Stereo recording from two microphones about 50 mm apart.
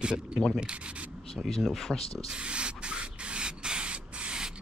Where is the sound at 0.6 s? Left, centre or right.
Right.